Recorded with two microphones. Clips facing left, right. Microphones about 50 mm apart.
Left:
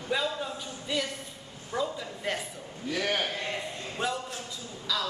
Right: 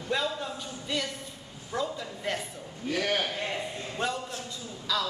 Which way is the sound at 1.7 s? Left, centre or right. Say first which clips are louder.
Even; centre.